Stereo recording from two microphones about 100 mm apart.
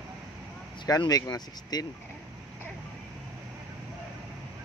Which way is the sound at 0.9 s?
40° left (ahead or behind).